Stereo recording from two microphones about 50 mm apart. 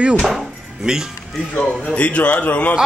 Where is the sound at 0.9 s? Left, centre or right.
Centre.